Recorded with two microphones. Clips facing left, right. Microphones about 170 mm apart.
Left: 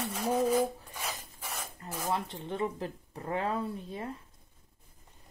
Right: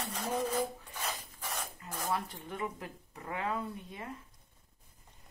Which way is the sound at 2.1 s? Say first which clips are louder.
Left 3 dB; 25° left (ahead or behind).